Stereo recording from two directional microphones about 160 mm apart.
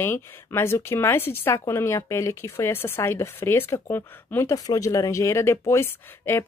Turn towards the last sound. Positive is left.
turn(degrees=15)  # may be behind; listen again after turning